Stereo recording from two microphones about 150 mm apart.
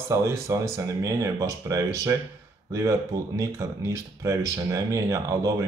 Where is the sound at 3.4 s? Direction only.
20° right (ahead or behind).